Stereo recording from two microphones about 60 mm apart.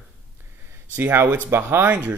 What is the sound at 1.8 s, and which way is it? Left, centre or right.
Speech, right.